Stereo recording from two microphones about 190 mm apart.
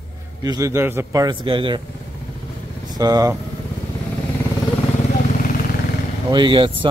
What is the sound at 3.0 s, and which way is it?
Speech, 20° right (ahead or behind).